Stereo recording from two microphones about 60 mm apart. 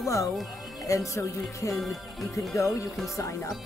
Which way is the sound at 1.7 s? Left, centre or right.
Centre.